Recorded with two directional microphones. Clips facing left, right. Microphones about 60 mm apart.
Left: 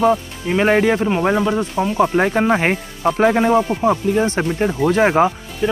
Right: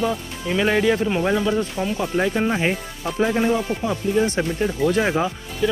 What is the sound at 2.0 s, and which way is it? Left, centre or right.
Speech, left.